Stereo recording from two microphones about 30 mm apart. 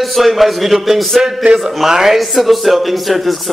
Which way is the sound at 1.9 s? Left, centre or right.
Centre.